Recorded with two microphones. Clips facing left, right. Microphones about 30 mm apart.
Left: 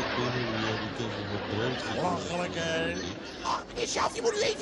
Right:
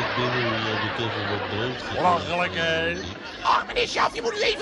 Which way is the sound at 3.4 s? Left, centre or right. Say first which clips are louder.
Right 10 dB; right.